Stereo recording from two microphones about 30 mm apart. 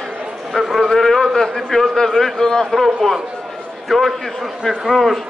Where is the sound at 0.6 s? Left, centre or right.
Left.